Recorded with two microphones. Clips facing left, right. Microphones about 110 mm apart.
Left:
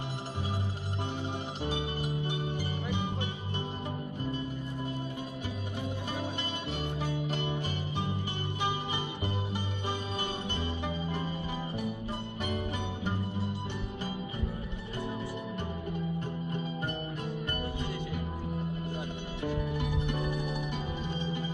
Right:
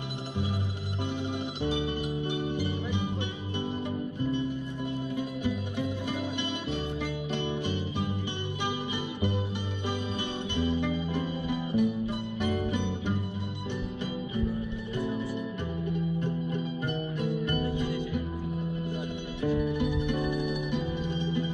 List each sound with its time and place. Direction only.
1.6 s music: 35° left (ahead or behind)
5.4 s music: 35° left (ahead or behind)
7.4 s music: 40° left (ahead or behind)
10.5 s music: 35° left (ahead or behind)
16.8 s music: 35° left (ahead or behind)
19.4 s music: 35° left (ahead or behind)